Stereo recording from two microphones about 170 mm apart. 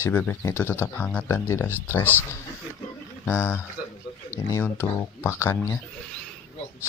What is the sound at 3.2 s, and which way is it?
Speech, 15° left (ahead or behind).